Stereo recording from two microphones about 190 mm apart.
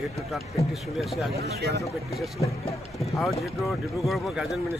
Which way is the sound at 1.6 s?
60° right (ahead or behind).